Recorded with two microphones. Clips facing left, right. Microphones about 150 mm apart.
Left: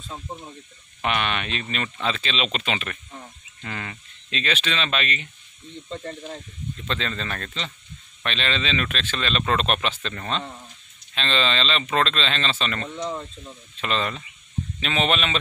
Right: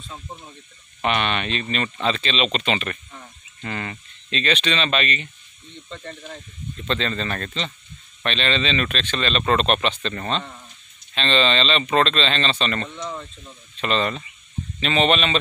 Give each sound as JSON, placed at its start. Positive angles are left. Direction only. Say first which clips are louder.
{"t": 0.1, "sound": "speech", "louder": "left 3 dB", "side_deg": 20}
{"t": 1.0, "sound": "speech", "louder": "right 3 dB", "side_deg": 5}
{"t": 5.9, "sound": "speech", "louder": "left 3 dB", "side_deg": 30}
{"t": 6.9, "sound": "speech", "louder": "right 5 dB", "side_deg": 5}
{"t": 12.9, "sound": "speech", "louder": "left 2 dB", "side_deg": 30}
{"t": 13.7, "sound": "speech", "louder": "right 4 dB", "side_deg": 5}